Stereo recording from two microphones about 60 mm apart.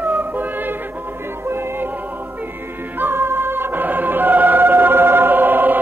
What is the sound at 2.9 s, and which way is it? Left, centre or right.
Music, right.